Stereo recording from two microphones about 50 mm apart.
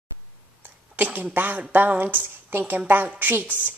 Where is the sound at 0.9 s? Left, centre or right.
Right.